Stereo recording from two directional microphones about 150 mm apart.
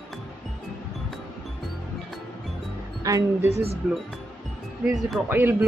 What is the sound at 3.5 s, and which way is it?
Speech, 45° right (ahead or behind).